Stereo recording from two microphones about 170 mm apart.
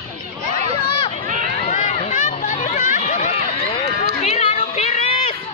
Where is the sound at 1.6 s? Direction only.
40° left (ahead or behind).